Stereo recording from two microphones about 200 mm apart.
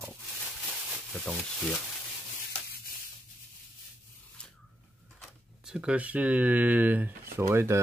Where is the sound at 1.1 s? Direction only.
5° left (ahead or behind).